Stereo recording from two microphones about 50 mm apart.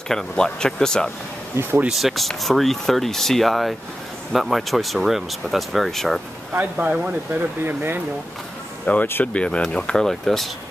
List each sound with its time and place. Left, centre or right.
0.1 s speech: centre
1.9 s speech: centre
6.6 s speech: right
7.3 s speech: right
8.9 s speech: left
9.2 s speech: left; by 10.5 s centre